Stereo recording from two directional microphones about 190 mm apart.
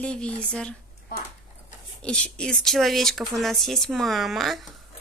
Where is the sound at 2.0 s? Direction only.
5° left (ahead or behind).